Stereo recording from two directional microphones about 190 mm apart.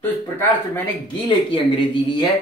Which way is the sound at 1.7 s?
25° left (ahead or behind).